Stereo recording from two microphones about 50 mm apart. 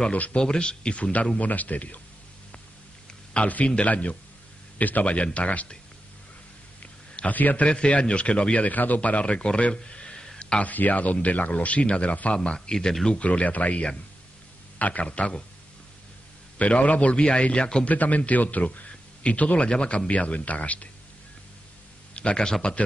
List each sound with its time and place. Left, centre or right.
0.1 s speech: left
0.4 s a man's voice: centre; by 2.0 s left
3.4 s speech: left
6.8 s a sound: left
7.6 s speech: left
8.6 s speech: left
10.4 s a sound: left
10.7 s speech: left; by 13.2 s centre
13.2 s speech: left
16.5 s speech: left
17.8 s a man's voice: left
22.1 s a man's voice: left